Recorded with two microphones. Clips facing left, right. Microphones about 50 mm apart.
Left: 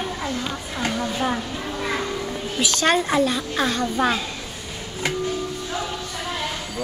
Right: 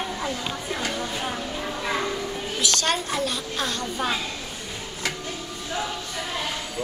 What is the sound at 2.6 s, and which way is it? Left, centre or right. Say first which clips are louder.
A woman's voice: left 6 dB; left.